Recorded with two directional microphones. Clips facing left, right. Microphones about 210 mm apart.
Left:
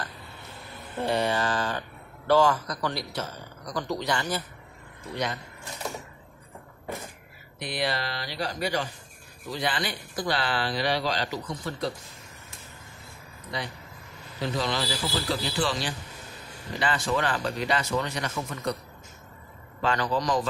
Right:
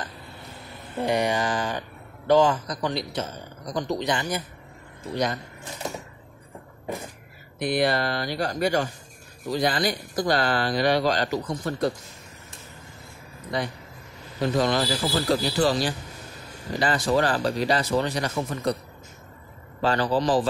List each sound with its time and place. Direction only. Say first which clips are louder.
1.0 s speech: right 2 dB; 15° right (ahead or behind)
5.1 s speech: right 5 dB; 40° right (ahead or behind)
7.5 s speech: right 7 dB; 50° right (ahead or behind)
13.5 s speech: right 6 dB; 50° right (ahead or behind)
19.8 s speech: right 4 dB; 35° right (ahead or behind)